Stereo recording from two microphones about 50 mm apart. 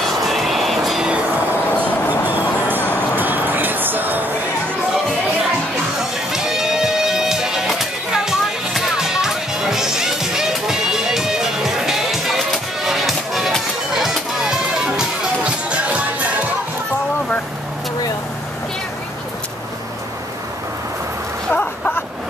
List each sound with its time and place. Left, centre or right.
0.0 s music: centre
1.8 s music: right
6.3 s music: centre
14.9 s music: right
21.5 s a sound: left